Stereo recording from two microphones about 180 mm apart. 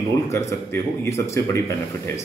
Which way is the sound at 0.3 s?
15° left (ahead or behind).